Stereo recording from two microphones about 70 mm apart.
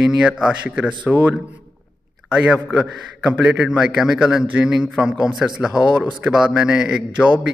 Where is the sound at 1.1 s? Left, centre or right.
Right.